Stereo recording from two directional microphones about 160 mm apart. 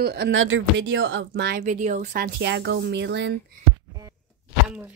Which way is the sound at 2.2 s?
90° right.